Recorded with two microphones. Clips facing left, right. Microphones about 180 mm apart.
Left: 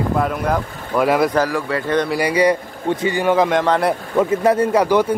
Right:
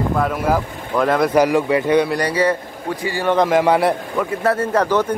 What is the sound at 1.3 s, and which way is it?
Speech, 15° right (ahead or behind).